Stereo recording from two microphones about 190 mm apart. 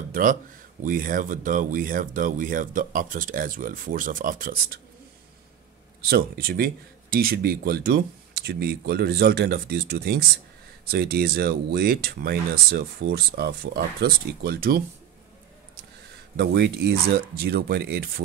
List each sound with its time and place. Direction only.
0.1 s speech: 45° right (ahead or behind)
6.0 s speech: 55° right (ahead or behind)
16.3 s speech: 60° right (ahead or behind)